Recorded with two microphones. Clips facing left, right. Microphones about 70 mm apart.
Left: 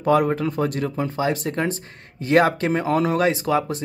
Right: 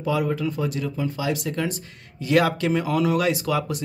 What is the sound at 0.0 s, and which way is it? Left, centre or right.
Speech, left.